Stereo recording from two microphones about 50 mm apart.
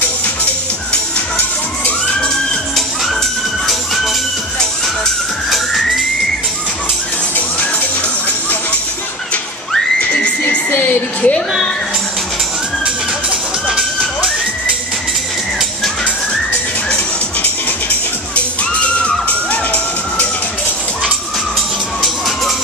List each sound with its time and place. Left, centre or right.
3.6 s music: centre
5.5 s music: centre
10.7 s music: left
13.7 s music: centre
16.9 s music: left